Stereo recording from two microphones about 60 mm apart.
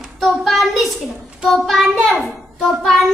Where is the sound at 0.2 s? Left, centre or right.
Centre.